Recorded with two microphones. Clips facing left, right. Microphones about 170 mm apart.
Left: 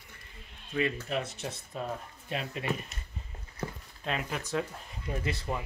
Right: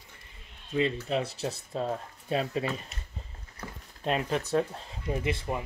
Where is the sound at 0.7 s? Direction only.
30° right (ahead or behind).